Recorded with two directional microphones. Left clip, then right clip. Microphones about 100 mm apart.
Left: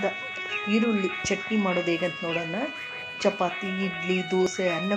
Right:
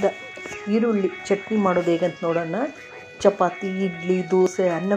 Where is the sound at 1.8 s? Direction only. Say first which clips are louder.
Right 5 dB; 15° left (ahead or behind).